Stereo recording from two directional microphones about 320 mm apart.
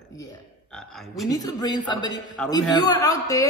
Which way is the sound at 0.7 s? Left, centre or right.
Centre.